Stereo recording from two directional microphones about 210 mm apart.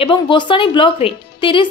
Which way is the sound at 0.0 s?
25° left (ahead or behind).